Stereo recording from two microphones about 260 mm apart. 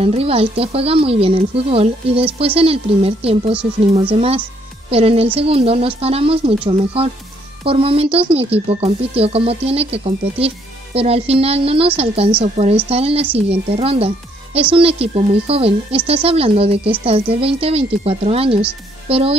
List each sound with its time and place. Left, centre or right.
0.0 s speech: right